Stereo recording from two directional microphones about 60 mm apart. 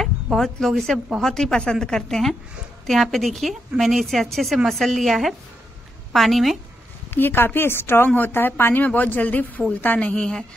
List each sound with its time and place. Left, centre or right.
0.0 s a woman's voice: centre
7.1 s a woman's voice: left
10.1 s speech: centre